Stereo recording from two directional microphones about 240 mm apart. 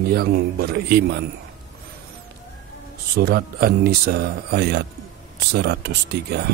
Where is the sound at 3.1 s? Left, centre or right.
Right.